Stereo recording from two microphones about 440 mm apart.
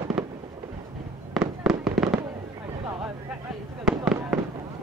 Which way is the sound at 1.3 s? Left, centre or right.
Centre.